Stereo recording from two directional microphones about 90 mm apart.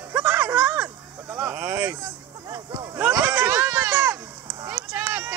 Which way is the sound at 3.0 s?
20° right (ahead or behind).